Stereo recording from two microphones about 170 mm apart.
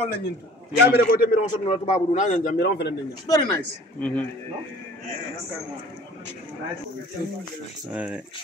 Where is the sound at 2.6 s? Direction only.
80° left.